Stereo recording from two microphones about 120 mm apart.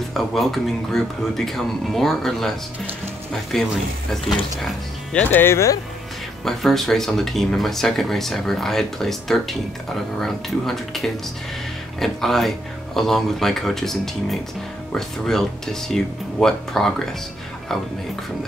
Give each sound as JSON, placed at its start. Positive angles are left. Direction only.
{"t": 0.1, "sound": "speech", "side_deg": 0}
{"t": 3.5, "sound": "speech", "side_deg": 5}
{"t": 5.1, "sound": "speech", "side_deg": 15}
{"t": 6.4, "sound": "speech", "side_deg": 5}